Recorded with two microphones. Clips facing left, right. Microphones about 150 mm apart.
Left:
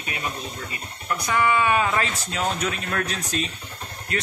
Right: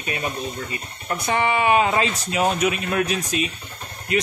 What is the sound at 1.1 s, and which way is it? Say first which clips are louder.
Speech: even; 25° right (ahead or behind).